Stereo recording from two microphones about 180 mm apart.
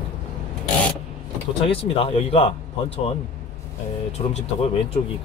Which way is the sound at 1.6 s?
30° left (ahead or behind).